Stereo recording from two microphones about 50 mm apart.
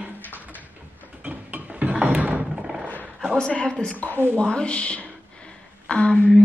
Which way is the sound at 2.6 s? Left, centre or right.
Centre.